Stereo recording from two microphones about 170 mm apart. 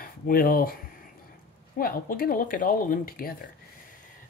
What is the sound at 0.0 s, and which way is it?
Speech, 60° left (ahead or behind).